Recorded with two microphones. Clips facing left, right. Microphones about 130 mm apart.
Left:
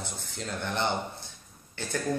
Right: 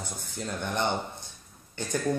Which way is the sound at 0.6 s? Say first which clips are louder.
Right 1 dB; 15° right (ahead or behind).